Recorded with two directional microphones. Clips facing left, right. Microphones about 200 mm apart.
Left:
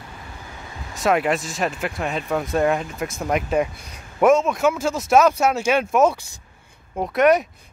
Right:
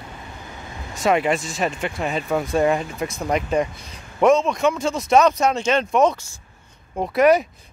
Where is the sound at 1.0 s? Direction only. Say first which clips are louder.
Right 1 dB; centre (ahead or behind).